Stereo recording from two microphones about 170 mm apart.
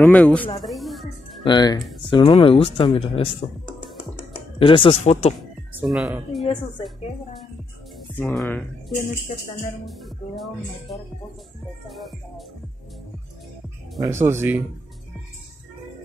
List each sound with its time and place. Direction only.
0.0 s speech: 10° left (ahead or behind)
0.6 s music: centre (ahead or behind)
1.4 s speech: 25° left (ahead or behind)
4.6 s speech: 30° left (ahead or behind)
5.7 s speech: 5° right (ahead or behind)
8.4 s speech: 5° left (ahead or behind)
9.3 s speech: 40° left (ahead or behind)
9.8 s speech: centre (ahead or behind)
13.9 s speech: 20° right (ahead or behind)